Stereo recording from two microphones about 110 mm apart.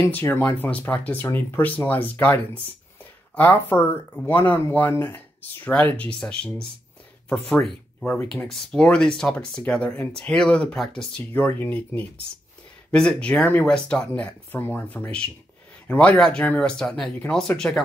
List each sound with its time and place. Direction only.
0.0 s speech: 20° left (ahead or behind)
3.0 s a sound: 15° left (ahead or behind)
3.7 s speech: 20° left (ahead or behind)
8.3 s speech: 5° left (ahead or behind)